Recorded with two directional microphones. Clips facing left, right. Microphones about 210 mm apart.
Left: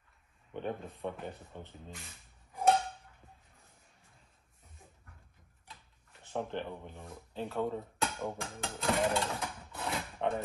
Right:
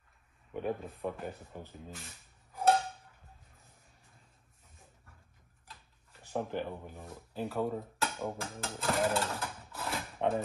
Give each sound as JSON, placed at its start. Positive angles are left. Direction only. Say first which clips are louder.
{"t": 0.5, "sound": "speech", "louder": "right 3 dB", "side_deg": -5}
{"t": 6.3, "sound": "speech", "louder": "right 2 dB", "side_deg": -5}